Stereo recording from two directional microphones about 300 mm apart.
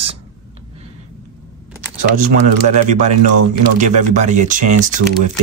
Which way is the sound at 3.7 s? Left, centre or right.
Right.